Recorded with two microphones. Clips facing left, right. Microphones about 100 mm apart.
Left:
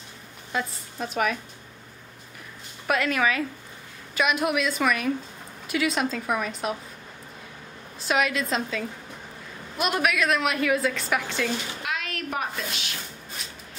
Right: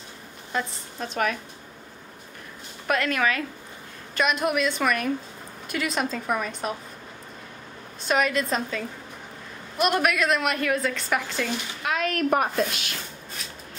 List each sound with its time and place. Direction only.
0.5 s a woman's voice: 5° left (ahead or behind)
2.9 s a woman's voice: 5° left (ahead or behind)
8.0 s a woman's voice: centre (ahead or behind)
11.9 s a woman's voice: 45° right (ahead or behind)